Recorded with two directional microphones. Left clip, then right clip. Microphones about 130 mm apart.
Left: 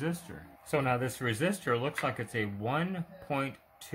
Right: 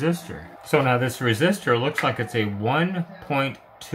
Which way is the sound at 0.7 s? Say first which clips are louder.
Right 10 dB; 35° left (ahead or behind).